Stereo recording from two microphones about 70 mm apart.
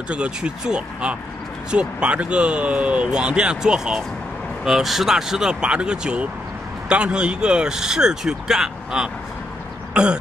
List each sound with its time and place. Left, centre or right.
0.1 s speech: centre
9.9 s throat clearing: centre